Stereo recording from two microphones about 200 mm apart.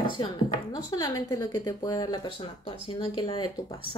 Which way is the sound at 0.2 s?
20° left (ahead or behind).